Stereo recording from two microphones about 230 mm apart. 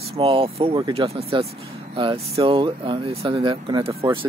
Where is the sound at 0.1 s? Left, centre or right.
Right.